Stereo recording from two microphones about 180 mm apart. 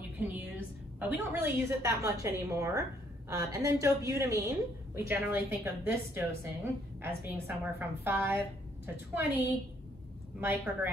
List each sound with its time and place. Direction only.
0.9 s a woman's voice: 10° right (ahead or behind)